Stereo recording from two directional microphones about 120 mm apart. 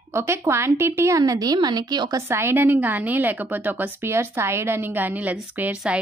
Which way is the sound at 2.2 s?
20° right (ahead or behind).